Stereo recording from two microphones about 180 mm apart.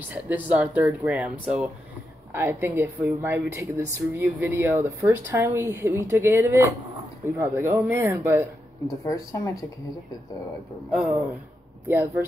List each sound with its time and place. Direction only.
0.1 s a woman's voice: 10° right (ahead or behind)
2.3 s a woman's voice: 10° right (ahead or behind)
8.8 s speech: 20° left (ahead or behind)
10.9 s a woman's voice: centre (ahead or behind)